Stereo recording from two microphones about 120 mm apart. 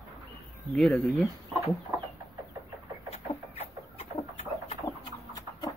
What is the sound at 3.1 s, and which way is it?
Chicken, 60° left (ahead or behind).